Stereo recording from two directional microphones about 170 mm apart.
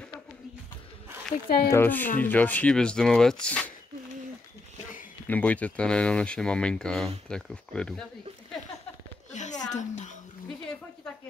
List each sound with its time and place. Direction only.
1.7 s speech: 10° left (ahead or behind)
5.3 s speech: 10° left (ahead or behind)
9.3 s a sound: 45° left (ahead or behind)